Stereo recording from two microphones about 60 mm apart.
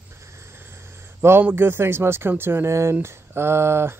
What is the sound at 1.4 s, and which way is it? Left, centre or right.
Speech, right.